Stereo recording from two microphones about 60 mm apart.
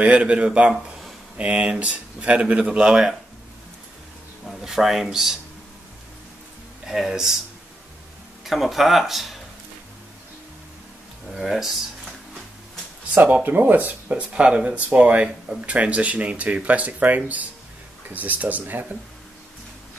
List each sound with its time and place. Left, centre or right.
0.0 s speech: right
4.5 s speech: centre
6.9 s speech: centre
8.5 s speech: centre
11.3 s speech: centre
13.1 s speech: right
15.2 s speech: centre
15.7 s speech: right